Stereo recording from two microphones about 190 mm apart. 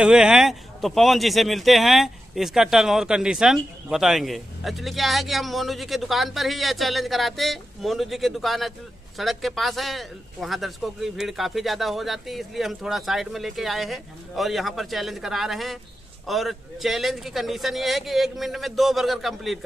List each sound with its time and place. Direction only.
0.0 s speech: 5° right (ahead or behind)